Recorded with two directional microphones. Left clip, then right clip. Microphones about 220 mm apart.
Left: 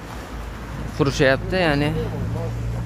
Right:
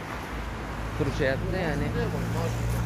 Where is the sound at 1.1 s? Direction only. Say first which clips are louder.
Left 10 dB; 40° left (ahead or behind).